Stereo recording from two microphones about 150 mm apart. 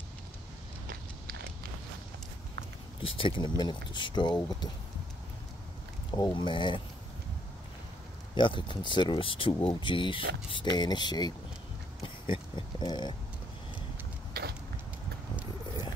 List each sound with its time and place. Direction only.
3.0 s speech: 35° left (ahead or behind)
6.1 s speech: 30° left (ahead or behind)
8.4 s speech: 35° left (ahead or behind)
14.3 s a sound: 90° right